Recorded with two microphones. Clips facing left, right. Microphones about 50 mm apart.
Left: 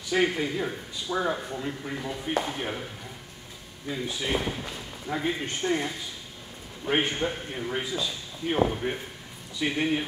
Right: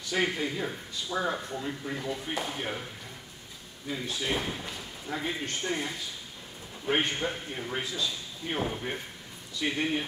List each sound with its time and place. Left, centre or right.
0.1 s a man's voice: centre
3.9 s a man's voice: centre
6.9 s a man's voice: centre